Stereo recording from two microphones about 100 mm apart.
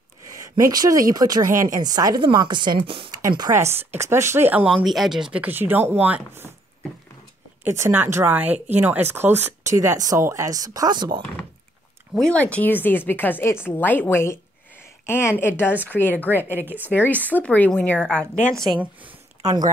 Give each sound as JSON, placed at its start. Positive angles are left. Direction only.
{"t": 0.4, "sound": "a woman's voice", "side_deg": -35}
{"t": 3.5, "sound": "speech", "side_deg": -50}
{"t": 3.9, "sound": "speech", "side_deg": -25}
{"t": 4.6, "sound": "speech", "side_deg": -5}
{"t": 5.4, "sound": "speech", "side_deg": -20}
{"t": 7.6, "sound": "speech", "side_deg": -25}
{"t": 9.8, "sound": "a woman's voice", "side_deg": -35}
{"t": 12.2, "sound": "speech", "side_deg": 10}
{"t": 16.5, "sound": "speech", "side_deg": -20}
{"t": 16.8, "sound": "speech", "side_deg": 20}